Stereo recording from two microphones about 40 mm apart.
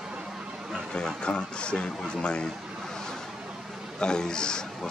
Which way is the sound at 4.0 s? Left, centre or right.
Centre.